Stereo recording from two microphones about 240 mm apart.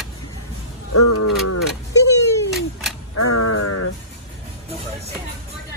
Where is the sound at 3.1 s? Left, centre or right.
Left.